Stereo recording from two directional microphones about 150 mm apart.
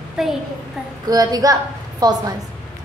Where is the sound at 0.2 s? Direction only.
Centre (ahead or behind).